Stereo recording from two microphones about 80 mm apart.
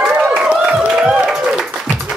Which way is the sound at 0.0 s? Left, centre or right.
Centre.